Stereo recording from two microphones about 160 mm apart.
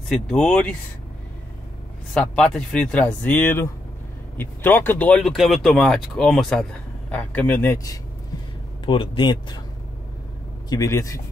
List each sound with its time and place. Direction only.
0.1 s speech: 5° left (ahead or behind)
2.1 s speech: 5° left (ahead or behind); by 8.0 s 20° left (ahead or behind)
8.8 s speech: 30° left (ahead or behind)
10.7 s speech: 20° left (ahead or behind)